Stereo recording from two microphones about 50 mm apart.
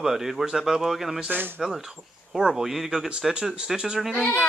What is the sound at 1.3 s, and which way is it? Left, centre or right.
Speech, right.